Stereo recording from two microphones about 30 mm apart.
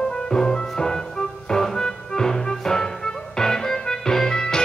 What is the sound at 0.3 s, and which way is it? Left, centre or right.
Music, left.